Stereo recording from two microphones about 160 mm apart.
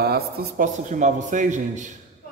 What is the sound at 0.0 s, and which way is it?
Speech, 75° right (ahead or behind).